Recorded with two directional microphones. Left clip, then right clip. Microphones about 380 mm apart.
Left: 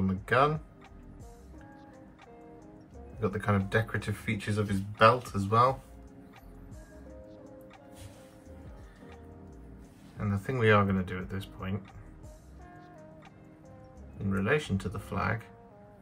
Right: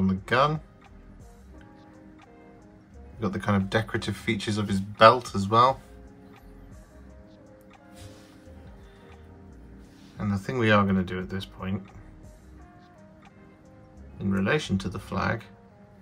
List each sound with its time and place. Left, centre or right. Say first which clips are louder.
0.0 s music: right 3 dB; centre
3.2 s speech: right 2 dB; centre
10.1 s speech: right 4 dB; centre
14.3 s speech: right 3 dB; centre